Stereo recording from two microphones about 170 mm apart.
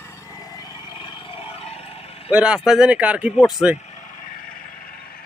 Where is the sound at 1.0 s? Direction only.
30° left (ahead or behind).